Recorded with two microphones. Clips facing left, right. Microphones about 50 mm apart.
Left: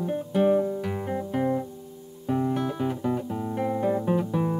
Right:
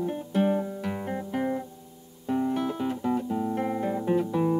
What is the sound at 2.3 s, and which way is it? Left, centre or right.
Music, centre.